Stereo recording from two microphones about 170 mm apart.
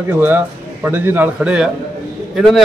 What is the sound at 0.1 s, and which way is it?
A man's voice, 10° right (ahead or behind).